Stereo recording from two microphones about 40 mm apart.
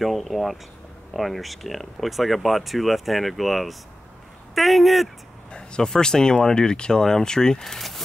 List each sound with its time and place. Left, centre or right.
0.0 s speech: centre
5.5 s speech: left